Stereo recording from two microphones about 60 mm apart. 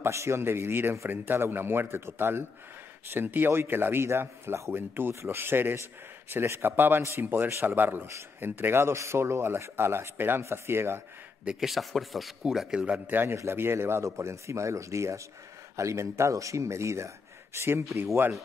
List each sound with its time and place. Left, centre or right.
0.0 s speech: right
11.6 s speech: centre
12.4 s speech: centre
13.0 s speech: right
17.6 s speech: right